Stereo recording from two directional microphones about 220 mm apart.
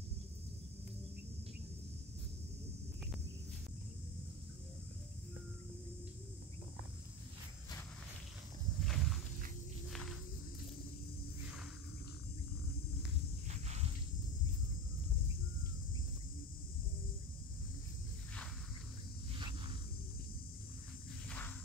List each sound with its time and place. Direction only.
8.8 s walk: centre (ahead or behind)
9.8 s cricket: centre (ahead or behind)
13.5 s walk: 30° right (ahead or behind)
21.3 s walk: 5° left (ahead or behind)